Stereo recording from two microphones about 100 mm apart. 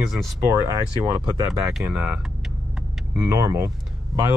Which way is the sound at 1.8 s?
20° right (ahead or behind).